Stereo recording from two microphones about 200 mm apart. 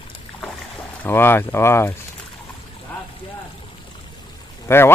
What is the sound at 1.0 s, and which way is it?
Speech, 10° left (ahead or behind).